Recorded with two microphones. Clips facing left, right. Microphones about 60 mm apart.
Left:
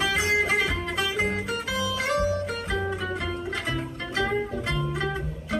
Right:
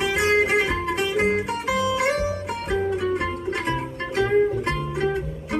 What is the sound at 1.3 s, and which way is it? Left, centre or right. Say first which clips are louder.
Music: right 5 dB; right.